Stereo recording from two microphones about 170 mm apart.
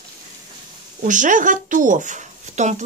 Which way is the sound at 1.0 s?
50° right (ahead or behind).